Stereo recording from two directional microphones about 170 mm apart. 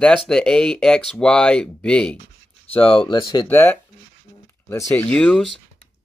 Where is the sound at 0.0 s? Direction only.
5° left (ahead or behind).